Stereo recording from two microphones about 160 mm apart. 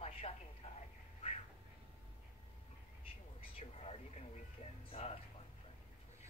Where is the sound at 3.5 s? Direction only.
40° left (ahead or behind).